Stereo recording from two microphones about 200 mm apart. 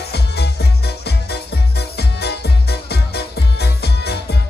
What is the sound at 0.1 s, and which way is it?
Music, 55° left (ahead or behind).